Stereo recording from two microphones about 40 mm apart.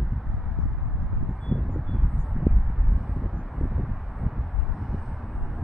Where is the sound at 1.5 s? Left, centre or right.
Left.